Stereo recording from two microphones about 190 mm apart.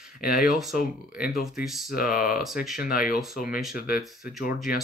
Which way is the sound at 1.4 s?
Centre (ahead or behind).